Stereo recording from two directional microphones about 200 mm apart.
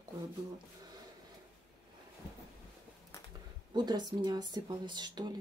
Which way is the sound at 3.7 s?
20° right (ahead or behind).